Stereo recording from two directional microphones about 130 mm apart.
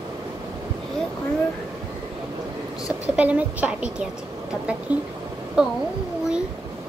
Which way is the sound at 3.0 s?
10° right (ahead or behind).